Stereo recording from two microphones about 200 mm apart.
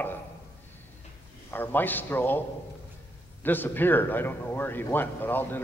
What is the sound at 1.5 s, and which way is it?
Speech, 10° left (ahead or behind).